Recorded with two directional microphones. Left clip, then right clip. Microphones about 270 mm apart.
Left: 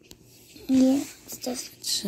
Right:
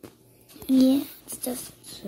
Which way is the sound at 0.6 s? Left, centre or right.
Centre.